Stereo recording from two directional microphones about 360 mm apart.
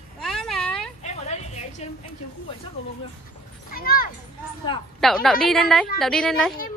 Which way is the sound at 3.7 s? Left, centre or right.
Left.